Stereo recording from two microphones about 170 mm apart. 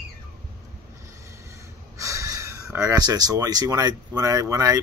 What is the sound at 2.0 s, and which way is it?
Speech, 20° right (ahead or behind).